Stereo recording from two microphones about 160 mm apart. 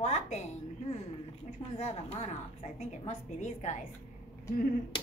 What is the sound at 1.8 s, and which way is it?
A woman's voice, 40° left (ahead or behind).